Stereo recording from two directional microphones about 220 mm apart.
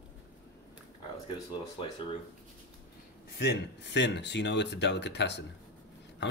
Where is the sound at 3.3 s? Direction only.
45° left (ahead or behind).